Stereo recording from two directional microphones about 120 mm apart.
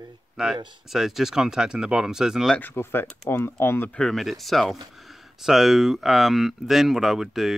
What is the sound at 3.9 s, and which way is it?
Speech, centre (ahead or behind).